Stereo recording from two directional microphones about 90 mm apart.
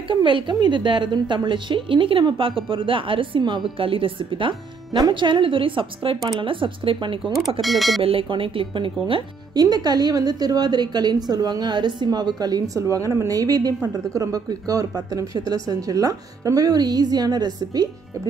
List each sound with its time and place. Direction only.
0.1 s a woman's voice: 65° right (ahead or behind)
3.7 s a woman's voice: 80° right
7.6 s speech: centre (ahead or behind)
8.0 s a woman's voice: 90° right; by 9.2 s 70° right (ahead or behind)
9.5 s a woman's voice: 50° right (ahead or behind)